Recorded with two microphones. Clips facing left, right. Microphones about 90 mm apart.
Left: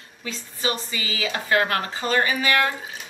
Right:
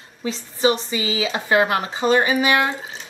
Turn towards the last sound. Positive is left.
turn(degrees=-20)  # may be behind; listen again after turning